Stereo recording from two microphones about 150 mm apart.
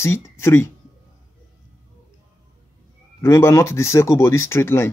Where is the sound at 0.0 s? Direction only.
15° left (ahead or behind).